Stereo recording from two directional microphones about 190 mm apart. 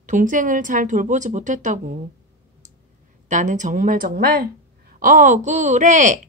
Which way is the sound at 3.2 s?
40° right (ahead or behind).